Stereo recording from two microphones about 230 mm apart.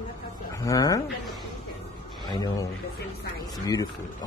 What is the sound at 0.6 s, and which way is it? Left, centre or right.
Speech, centre.